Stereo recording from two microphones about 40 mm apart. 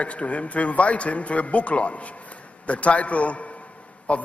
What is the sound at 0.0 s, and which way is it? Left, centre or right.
A man's voice, left.